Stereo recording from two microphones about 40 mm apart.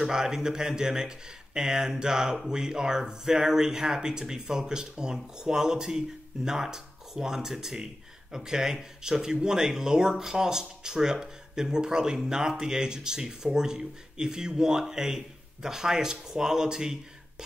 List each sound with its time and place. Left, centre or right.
0.0 s speech: centre